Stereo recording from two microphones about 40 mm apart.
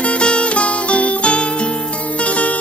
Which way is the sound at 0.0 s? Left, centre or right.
Left.